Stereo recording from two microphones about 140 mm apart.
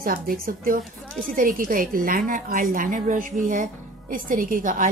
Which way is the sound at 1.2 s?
80° right.